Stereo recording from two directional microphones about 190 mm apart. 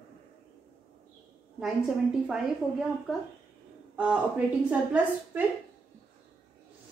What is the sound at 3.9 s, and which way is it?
A man's voice, 5° right (ahead or behind).